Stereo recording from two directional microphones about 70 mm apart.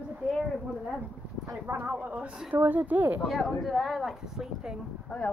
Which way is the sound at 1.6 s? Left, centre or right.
Right.